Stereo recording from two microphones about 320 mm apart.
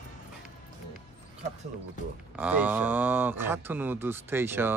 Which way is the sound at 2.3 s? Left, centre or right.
Centre.